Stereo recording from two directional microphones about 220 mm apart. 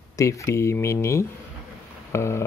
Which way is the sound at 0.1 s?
15° left (ahead or behind).